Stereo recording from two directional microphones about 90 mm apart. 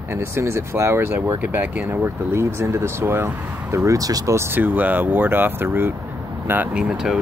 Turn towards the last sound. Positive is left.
turn(degrees=-5)  # may be behind; listen again after turning